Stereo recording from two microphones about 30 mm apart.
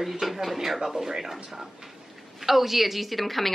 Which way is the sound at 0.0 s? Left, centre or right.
Centre.